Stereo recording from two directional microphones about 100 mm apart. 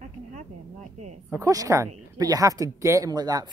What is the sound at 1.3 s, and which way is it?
Speech, 35° right (ahead or behind).